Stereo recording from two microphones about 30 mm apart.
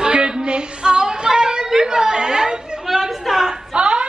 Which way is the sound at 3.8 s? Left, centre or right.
Right.